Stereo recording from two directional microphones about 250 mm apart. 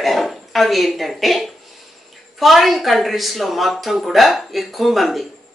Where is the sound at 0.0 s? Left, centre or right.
Centre.